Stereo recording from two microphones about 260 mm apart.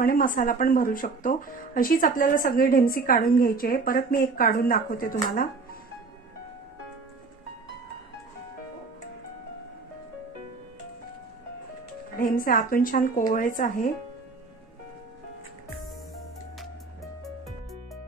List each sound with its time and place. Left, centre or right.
0.0 s speech: left
12.2 s speech: left